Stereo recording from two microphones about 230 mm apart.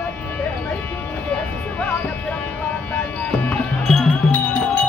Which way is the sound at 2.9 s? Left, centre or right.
Centre.